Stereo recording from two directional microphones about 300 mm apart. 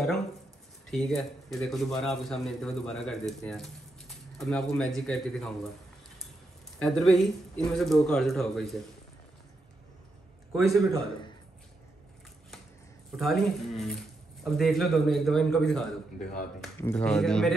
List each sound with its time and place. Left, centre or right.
0.8 s speech: centre
6.8 s speech: centre
10.5 s speech: centre
13.1 s speech: centre